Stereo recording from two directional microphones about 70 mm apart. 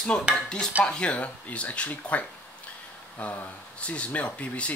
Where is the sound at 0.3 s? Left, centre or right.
Centre.